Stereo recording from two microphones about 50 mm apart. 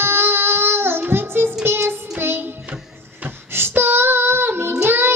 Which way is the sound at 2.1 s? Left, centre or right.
Right.